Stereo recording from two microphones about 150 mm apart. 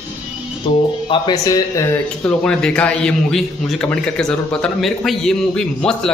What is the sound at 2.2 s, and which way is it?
A man's voice, 5° left (ahead or behind).